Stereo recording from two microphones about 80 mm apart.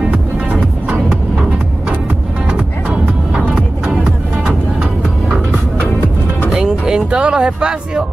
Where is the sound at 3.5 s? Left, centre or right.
Centre.